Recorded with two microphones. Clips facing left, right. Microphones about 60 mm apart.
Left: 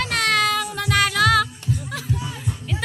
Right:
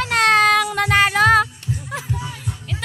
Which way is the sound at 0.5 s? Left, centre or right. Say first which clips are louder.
Right 7 dB; right.